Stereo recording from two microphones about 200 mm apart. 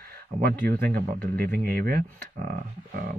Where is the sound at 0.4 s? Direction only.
50° right (ahead or behind).